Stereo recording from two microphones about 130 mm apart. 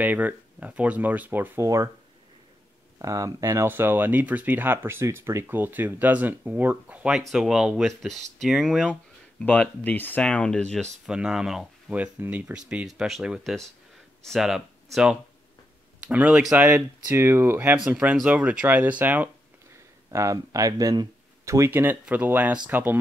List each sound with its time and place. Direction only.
0.0 s speech: 10° right (ahead or behind)
3.0 s speech: 25° right (ahead or behind); by 8.9 s centre (ahead or behind)
9.4 s speech: 10° left (ahead or behind)
11.1 s speech: 5° right (ahead or behind)
16.6 s speech: 20° right (ahead or behind)
17.7 s speech: 5° right (ahead or behind)
20.1 s speech: 25° right (ahead or behind)